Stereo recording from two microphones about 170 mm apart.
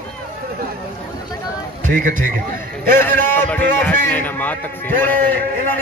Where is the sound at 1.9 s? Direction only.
65° right (ahead or behind).